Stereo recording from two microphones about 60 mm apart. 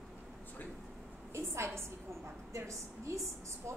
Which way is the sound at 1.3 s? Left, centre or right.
Right.